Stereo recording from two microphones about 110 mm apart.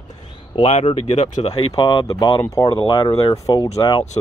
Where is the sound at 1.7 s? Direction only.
45° left (ahead or behind).